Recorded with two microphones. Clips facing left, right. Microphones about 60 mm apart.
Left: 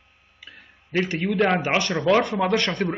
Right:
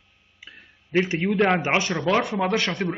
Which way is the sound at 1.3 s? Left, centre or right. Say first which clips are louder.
Even; centre.